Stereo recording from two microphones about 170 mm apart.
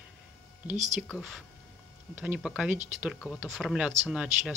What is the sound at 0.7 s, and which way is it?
Speech, 45° right (ahead or behind).